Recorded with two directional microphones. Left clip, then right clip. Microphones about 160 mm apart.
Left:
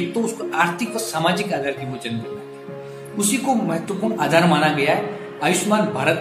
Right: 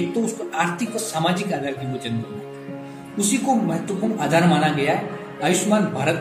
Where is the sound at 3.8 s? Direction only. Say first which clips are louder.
Left 2 dB; 20° right (ahead or behind).